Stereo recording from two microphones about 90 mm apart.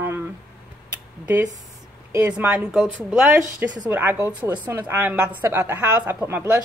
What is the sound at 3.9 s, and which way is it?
A woman's voice, 25° right (ahead or behind).